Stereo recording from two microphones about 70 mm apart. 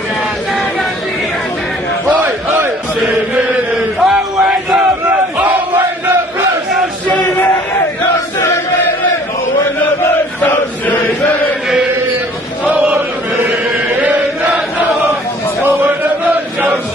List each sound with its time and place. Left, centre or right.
2.1 s battle cry: right
3.0 s chant: centre
10.4 s chant: left
12.6 s chant: right